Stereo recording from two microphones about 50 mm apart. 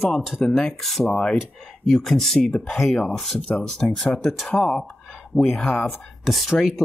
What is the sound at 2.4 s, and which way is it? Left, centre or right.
Speech, centre.